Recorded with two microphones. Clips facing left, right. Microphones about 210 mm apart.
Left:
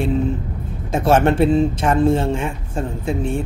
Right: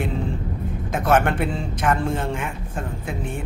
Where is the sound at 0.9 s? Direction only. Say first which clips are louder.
Left 5 dB; 25° left (ahead or behind).